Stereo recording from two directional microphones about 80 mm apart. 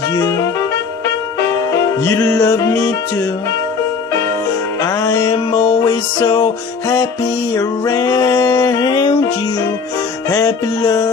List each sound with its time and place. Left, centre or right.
2.0 s music: left
4.8 s music: left
7.5 s a sound: left
10.3 s music: left